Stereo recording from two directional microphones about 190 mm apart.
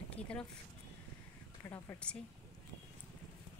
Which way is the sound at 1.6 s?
15° left (ahead or behind).